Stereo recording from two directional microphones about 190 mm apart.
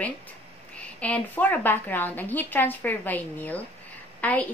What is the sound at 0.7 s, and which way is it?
A woman's voice, 5° left (ahead or behind).